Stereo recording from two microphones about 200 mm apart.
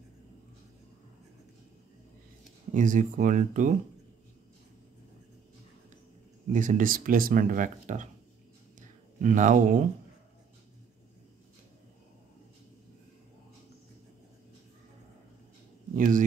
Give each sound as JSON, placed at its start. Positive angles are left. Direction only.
{"t": 2.7, "sound": "speech", "side_deg": -40}
{"t": 6.5, "sound": "speech", "side_deg": -40}
{"t": 9.2, "sound": "speech", "side_deg": -40}
{"t": 16.0, "sound": "speech", "side_deg": -40}